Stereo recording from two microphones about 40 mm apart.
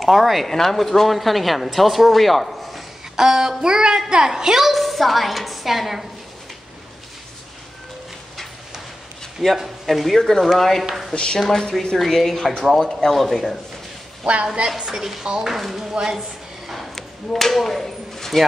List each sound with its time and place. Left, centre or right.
0.0 s speech: centre
3.2 s a woman's voice: centre
4.6 s speech: centre
9.4 s speech: centre
14.2 s a woman's voice: right
14.8 s a woman's voice: centre
15.5 s a woman's voice: centre
16.2 s a sound: centre